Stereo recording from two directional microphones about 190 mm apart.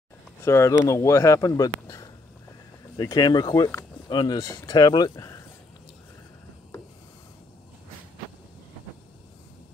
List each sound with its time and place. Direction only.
0.4 s speech: 15° left (ahead or behind)